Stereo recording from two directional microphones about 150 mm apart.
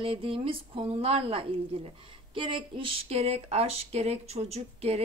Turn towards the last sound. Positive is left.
turn(degrees=-45)  # may be behind; listen again after turning